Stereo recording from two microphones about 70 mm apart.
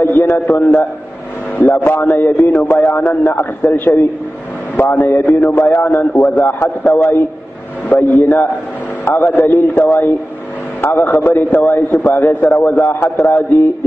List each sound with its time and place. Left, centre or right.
0.0 s a man's voice: left